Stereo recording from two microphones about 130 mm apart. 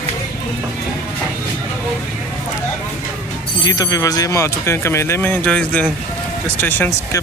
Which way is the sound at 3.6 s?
30° left (ahead or behind).